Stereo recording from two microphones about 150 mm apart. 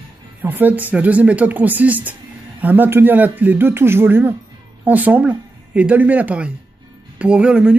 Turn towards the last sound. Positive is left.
turn(degrees=-5)  # may be behind; listen again after turning